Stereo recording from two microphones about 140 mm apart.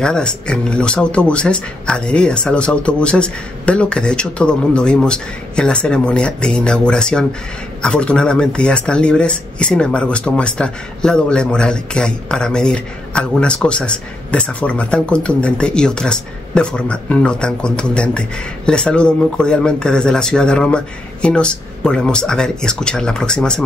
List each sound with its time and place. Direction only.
0.0 s speech: 5° left (ahead or behind)